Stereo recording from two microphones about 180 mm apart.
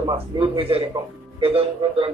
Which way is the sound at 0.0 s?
30° right (ahead or behind).